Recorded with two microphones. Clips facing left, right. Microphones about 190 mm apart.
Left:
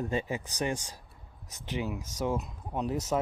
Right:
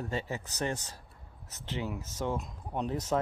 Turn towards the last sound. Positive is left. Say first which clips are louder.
# left 1 dB
turn(degrees=10)  # may be behind; listen again after turning